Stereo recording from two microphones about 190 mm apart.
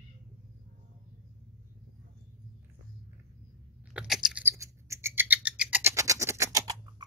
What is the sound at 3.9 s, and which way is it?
Scissors, 5° right (ahead or behind).